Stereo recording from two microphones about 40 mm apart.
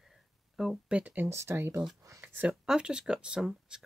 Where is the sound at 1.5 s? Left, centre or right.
Right.